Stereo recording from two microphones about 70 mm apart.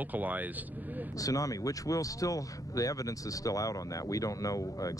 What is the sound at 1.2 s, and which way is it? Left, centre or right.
Speech, left.